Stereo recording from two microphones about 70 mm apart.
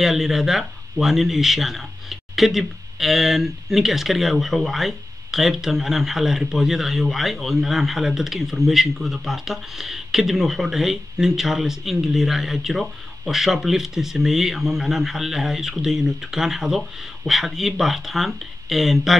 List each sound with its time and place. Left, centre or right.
0.0 s speech: centre